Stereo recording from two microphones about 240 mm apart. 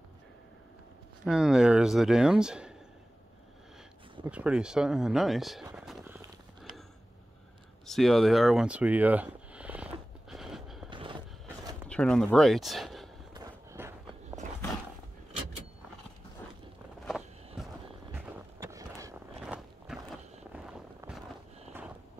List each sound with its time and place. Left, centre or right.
1.2 s speech: centre
4.3 s speech: centre
5.9 s a sound: centre
7.8 s a sound: centre
10.9 s a sound: centre
11.9 s speech: centre
13.3 s vehicle: centre
18.1 s vehicle: centre
19.4 s walk: centre